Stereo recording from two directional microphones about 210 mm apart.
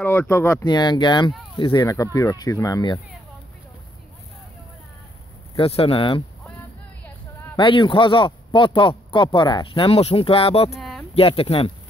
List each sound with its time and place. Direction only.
0.0 s speech: 10° left (ahead or behind)
5.6 s speech: 25° left (ahead or behind)
7.5 s speech: 25° left (ahead or behind)
10.7 s a sound: centre (ahead or behind)
11.1 s speech: 25° left (ahead or behind)